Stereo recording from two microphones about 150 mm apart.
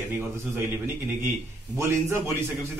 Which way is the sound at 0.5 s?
15° right (ahead or behind).